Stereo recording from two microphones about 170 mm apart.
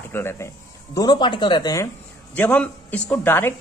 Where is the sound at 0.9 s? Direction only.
25° left (ahead or behind).